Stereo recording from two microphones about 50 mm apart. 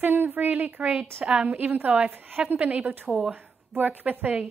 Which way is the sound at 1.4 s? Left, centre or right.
Right.